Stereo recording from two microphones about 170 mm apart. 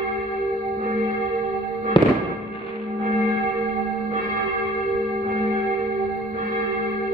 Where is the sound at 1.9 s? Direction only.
30° left (ahead or behind).